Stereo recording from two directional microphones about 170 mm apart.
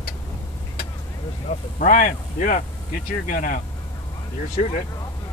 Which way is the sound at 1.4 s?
45° left (ahead or behind).